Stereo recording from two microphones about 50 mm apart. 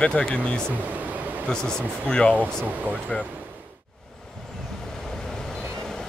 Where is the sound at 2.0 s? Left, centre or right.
Centre.